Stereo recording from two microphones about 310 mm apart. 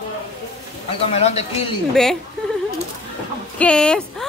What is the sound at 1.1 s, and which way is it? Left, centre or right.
Speech, centre.